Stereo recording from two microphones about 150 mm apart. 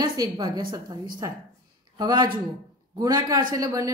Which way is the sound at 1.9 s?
30° right (ahead or behind).